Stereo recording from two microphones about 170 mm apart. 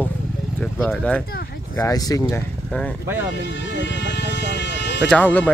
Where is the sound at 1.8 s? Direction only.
20° left (ahead or behind).